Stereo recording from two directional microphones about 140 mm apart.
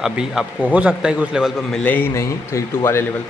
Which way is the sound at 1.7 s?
10° left (ahead or behind).